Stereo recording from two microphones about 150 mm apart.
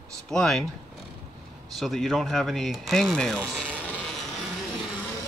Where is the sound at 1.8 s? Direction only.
Centre (ahead or behind).